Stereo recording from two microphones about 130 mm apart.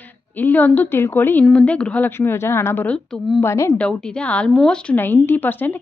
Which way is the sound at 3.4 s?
25° left (ahead or behind).